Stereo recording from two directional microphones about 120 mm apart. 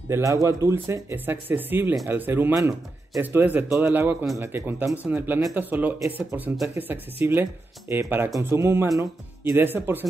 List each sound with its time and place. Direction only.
0.1 s speech: 25° right (ahead or behind)